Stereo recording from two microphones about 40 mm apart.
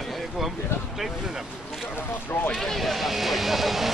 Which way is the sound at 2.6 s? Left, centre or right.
Centre.